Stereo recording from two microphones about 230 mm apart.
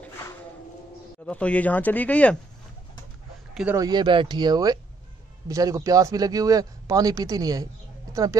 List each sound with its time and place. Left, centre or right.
1.2 s speech: centre
3.5 s a man's voice: centre